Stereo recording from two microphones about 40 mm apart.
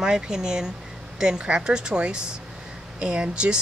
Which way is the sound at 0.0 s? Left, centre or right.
Centre.